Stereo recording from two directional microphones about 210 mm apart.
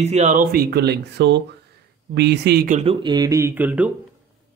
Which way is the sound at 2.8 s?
25° right (ahead or behind).